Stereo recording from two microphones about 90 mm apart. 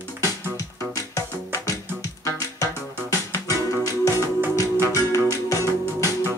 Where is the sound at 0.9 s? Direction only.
35° left (ahead or behind).